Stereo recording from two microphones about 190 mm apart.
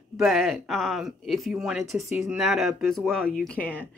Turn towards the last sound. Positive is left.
turn(degrees=5)  # may be behind; listen again after turning